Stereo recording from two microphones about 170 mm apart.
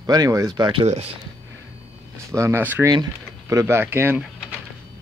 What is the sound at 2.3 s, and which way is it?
Speech, 15° right (ahead or behind).